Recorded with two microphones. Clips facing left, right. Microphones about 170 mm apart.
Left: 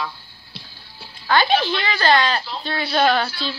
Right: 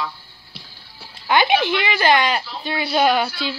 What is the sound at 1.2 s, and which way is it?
Speech, 15° right (ahead or behind).